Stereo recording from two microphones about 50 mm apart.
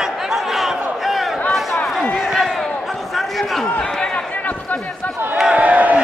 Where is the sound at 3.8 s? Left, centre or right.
Centre.